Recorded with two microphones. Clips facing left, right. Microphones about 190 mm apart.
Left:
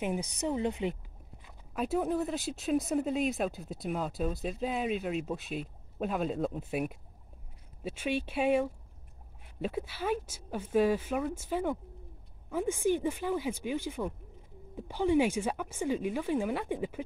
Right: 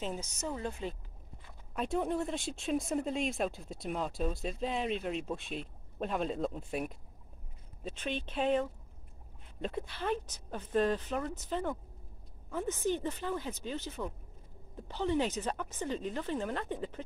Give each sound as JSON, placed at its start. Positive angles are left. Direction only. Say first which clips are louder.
{"t": 0.4, "sound": "a woman's voice", "louder": "left 7 dB", "side_deg": 20}
{"t": 1.8, "sound": "speech", "louder": "left 3 dB", "side_deg": 5}